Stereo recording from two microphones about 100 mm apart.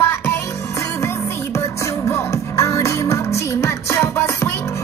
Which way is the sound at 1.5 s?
30° left (ahead or behind).